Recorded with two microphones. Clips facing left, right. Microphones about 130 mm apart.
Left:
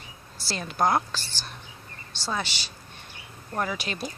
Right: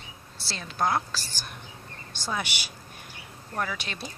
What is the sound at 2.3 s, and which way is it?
Speech, 15° right (ahead or behind).